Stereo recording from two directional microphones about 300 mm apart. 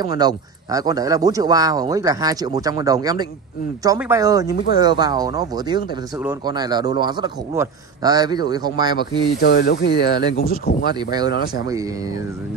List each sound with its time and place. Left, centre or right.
0.0 s a man's voice: centre
9.4 s speech: left
11.1 s a man's voice: centre